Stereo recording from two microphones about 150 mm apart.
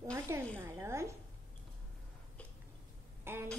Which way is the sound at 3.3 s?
15° right (ahead or behind).